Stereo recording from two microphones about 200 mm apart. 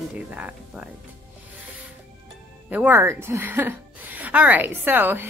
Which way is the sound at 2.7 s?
10° right (ahead or behind).